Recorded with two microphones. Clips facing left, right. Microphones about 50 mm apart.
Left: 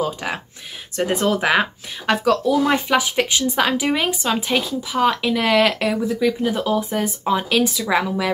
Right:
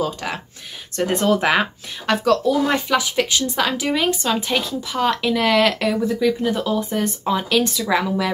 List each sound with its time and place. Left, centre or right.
0.0 s speech: centre